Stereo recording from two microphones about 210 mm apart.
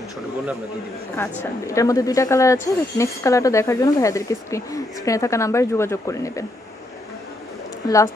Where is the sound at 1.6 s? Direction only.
15° left (ahead or behind).